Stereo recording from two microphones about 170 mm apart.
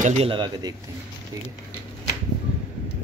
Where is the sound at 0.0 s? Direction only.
35° right (ahead or behind).